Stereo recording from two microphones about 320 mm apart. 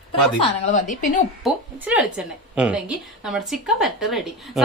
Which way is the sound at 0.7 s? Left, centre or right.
Left.